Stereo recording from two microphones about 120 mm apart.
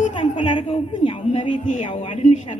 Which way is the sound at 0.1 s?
45° left (ahead or behind).